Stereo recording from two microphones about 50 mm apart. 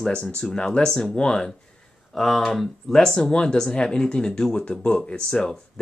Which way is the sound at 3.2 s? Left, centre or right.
Centre.